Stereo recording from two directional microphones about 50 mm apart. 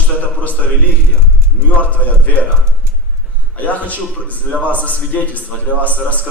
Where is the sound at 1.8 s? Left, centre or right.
Left.